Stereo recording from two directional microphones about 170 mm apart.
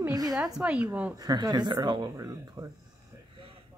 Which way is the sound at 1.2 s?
25° right (ahead or behind).